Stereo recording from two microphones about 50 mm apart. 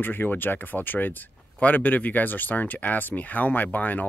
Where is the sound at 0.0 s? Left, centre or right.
Left.